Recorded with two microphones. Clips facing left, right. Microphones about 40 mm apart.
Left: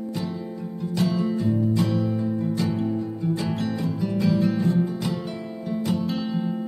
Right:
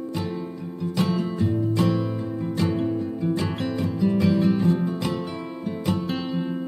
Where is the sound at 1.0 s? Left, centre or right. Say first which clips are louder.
Left 1 dB; right.